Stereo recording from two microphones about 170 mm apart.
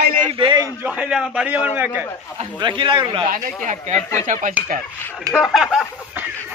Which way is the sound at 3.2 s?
45° right (ahead or behind).